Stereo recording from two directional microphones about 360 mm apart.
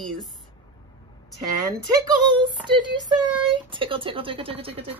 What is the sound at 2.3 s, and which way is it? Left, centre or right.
Speech, centre.